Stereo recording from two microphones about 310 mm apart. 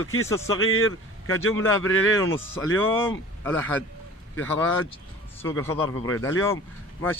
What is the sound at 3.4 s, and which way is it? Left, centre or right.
Speech, centre.